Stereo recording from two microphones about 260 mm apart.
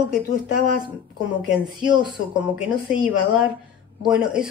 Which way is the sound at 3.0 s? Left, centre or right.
Centre.